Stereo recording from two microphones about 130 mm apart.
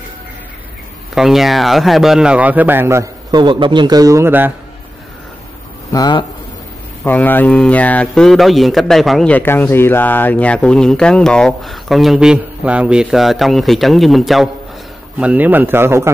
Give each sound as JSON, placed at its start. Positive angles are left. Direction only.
{"t": 1.1, "sound": "speech", "side_deg": 0}
{"t": 3.3, "sound": "speech", "side_deg": -35}
{"t": 5.9, "sound": "speech", "side_deg": 30}
{"t": 7.1, "sound": "speech", "side_deg": 15}
{"t": 9.3, "sound": "speech", "side_deg": 15}
{"t": 15.1, "sound": "speech", "side_deg": -10}